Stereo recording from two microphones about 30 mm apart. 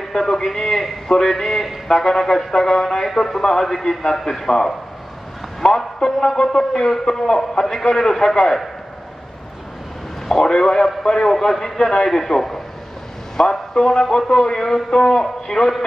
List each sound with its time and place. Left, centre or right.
0.1 s a man's voice: centre
1.0 s a man's voice: left
1.3 s speech: centre
5.6 s speech: left; by 8.4 s centre
10.6 s speech: centre
11.8 s a man's voice: left